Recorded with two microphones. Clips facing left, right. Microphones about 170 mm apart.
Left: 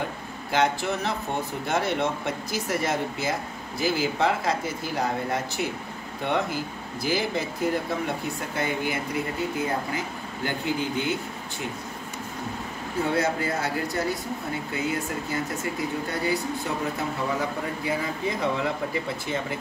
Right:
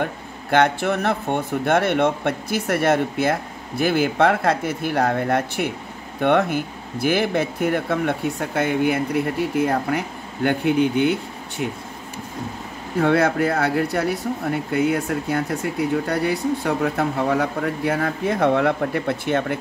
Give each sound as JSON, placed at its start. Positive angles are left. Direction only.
{"t": 0.0, "sound": "a man's voice", "side_deg": -65}
{"t": 13.0, "sound": "a man's voice", "side_deg": -75}